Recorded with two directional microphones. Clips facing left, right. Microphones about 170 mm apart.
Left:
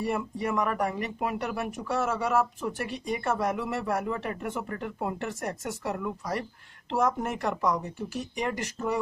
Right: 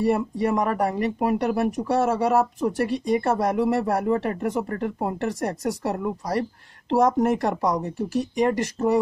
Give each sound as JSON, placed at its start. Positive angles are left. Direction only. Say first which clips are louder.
{"t": 0.0, "sound": "speech", "louder": "right 8 dB", "side_deg": -40}